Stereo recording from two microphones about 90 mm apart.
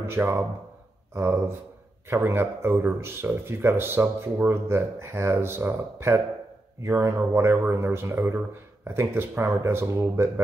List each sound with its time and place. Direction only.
0.0 s speech: 25° right (ahead or behind)